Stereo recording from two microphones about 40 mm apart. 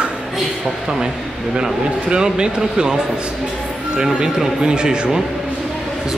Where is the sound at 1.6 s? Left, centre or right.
Centre.